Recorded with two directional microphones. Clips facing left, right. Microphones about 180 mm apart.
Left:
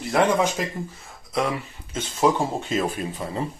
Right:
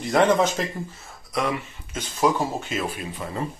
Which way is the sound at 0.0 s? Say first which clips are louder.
Right 1 dB; 5° left (ahead or behind).